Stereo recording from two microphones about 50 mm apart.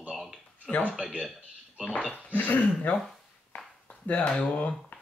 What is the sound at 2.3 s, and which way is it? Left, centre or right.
Speech, left.